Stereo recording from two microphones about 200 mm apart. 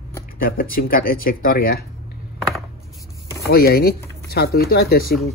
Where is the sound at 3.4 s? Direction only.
50° left (ahead or behind).